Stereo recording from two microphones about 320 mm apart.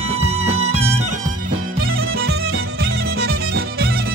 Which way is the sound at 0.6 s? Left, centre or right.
Centre.